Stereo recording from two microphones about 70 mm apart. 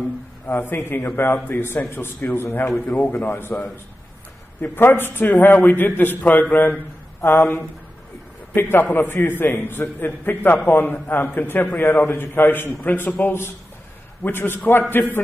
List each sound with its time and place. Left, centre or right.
0.5 s a man's voice: left
3.2 s a man's voice: left